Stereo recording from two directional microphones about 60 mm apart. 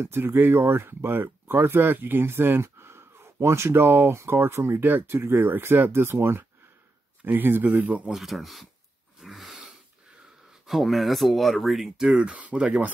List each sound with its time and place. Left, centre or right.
0.0 s speech: right
4.8 s speech: right
8.1 s speech: centre
9.2 s sneeze: centre
10.7 s speech: centre